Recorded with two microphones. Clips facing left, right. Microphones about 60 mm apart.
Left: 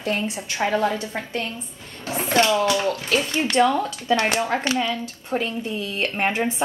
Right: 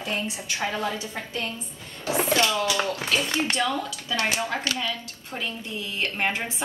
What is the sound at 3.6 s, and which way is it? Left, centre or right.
A woman's voice, left.